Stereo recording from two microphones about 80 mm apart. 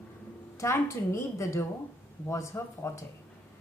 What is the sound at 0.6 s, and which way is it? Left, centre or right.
A woman's voice, left.